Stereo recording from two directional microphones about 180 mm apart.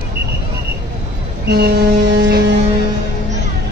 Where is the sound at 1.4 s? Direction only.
65° right (ahead or behind).